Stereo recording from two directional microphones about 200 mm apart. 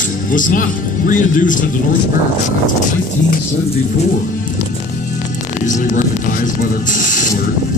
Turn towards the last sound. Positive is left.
turn(degrees=40)  # may be behind; listen again after turning